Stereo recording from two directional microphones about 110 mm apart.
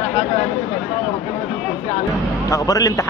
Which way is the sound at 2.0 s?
30° left (ahead or behind).